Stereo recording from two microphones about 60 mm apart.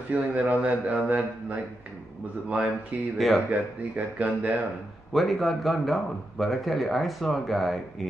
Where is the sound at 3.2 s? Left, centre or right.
Centre.